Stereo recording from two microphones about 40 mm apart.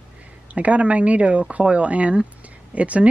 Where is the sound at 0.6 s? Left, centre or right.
Right.